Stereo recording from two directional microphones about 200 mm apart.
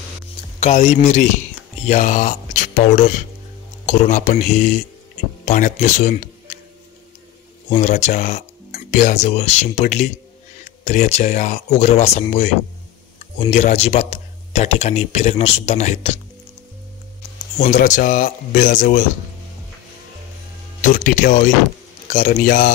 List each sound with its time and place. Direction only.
0.6 s a man's voice: 35° left (ahead or behind)
7.8 s speech: 35° left (ahead or behind)
17.6 s speech: 35° left (ahead or behind)
20.8 s a man's voice: 40° left (ahead or behind)